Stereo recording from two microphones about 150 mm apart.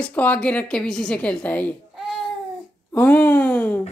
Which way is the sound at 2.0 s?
Centre (ahead or behind).